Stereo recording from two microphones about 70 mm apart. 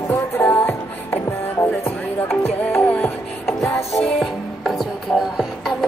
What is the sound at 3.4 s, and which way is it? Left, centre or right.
Music, centre.